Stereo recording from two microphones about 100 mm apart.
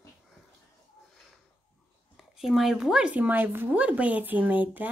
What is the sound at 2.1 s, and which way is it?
A woman's voice, centre (ahead or behind).